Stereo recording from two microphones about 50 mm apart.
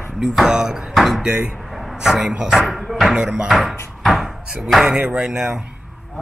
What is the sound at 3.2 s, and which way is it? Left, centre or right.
Speech, centre.